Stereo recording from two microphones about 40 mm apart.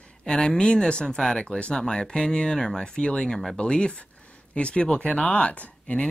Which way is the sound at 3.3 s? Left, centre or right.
Centre.